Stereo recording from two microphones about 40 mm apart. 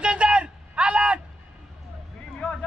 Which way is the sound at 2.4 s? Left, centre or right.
Left.